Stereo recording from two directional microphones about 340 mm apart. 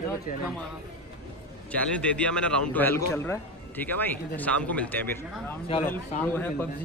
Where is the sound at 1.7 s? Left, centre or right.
Centre.